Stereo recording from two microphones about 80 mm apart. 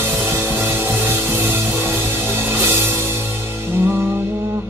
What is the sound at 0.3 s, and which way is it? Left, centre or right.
Music, right.